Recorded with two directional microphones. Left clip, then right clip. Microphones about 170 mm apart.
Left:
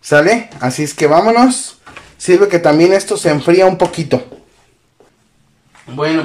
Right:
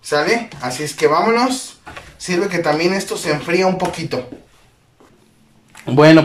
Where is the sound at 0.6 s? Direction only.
50° left (ahead or behind).